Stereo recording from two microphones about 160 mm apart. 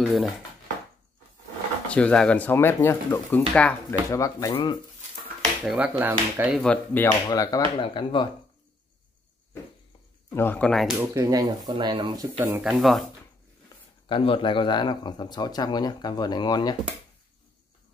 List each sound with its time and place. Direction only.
0.0 s speech: centre (ahead or behind)
1.9 s speech: 5° left (ahead or behind)
3.3 s speech: 10° left (ahead or behind)
4.1 s speech: 20° left (ahead or behind)
5.4 s speech: 5° right (ahead or behind)
6.6 s speech: 10° left (ahead or behind)
7.1 s speech: 25° left (ahead or behind)
10.3 s speech: 10° left (ahead or behind)
11.0 s speech: 20° right (ahead or behind)
12.4 s speech: 10° right (ahead or behind)
12.7 s speech: centre (ahead or behind)
14.0 s speech: 35° left (ahead or behind)